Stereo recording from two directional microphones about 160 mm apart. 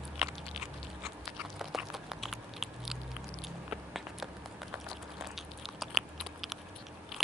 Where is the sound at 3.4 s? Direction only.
Centre (ahead or behind).